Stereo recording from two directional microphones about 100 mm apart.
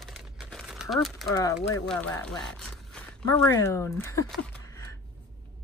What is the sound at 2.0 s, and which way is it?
Speech, 5° left (ahead or behind).